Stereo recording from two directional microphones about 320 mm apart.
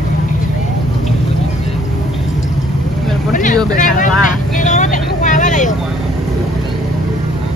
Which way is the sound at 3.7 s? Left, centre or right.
Left.